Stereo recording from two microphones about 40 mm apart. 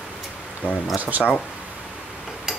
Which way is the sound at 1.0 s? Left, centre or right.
Right.